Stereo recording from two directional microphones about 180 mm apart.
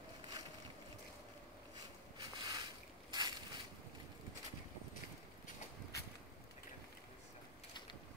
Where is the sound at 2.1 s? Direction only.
25° right (ahead or behind).